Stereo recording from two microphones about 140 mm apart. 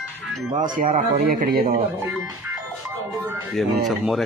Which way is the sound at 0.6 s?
65° right (ahead or behind).